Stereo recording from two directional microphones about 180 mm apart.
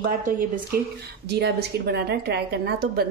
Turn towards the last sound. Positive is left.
turn(degrees=-60)  # may be behind; listen again after turning